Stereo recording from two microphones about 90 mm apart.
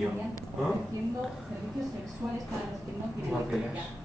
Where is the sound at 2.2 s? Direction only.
30° right (ahead or behind).